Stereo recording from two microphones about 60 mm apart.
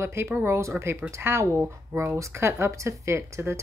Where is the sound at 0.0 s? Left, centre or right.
Right.